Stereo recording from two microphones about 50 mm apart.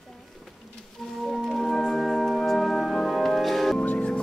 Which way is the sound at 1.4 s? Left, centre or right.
Centre.